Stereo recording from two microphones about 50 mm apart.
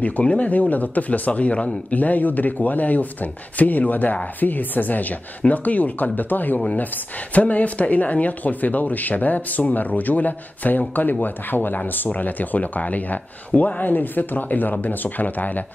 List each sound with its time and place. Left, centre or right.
0.0 s speech: left